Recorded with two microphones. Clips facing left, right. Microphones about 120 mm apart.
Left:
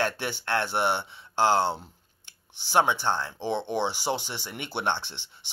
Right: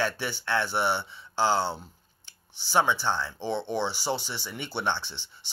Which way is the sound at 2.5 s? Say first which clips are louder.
Left 2 dB; 55° left (ahead or behind).